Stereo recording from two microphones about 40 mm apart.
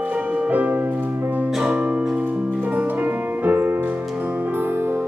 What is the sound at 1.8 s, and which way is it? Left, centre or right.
Music, right.